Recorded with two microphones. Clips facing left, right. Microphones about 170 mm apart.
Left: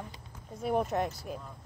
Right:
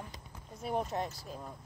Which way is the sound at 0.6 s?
55° left (ahead or behind).